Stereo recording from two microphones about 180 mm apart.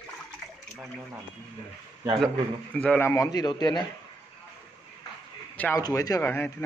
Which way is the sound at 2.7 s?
10° left (ahead or behind).